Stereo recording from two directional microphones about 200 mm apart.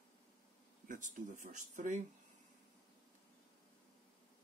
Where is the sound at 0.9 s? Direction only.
40° right (ahead or behind).